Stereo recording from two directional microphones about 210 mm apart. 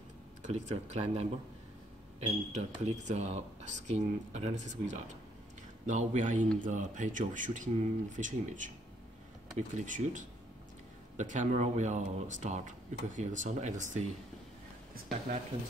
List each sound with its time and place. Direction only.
0.4 s speech: 35° right (ahead or behind)